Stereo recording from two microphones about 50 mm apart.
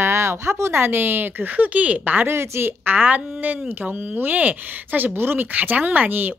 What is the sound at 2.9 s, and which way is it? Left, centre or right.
Speech, right.